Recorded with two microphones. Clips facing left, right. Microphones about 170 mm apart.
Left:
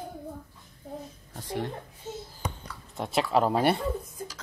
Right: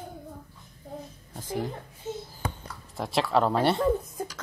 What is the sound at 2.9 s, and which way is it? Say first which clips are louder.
Speech: even; centre (ahead or behind).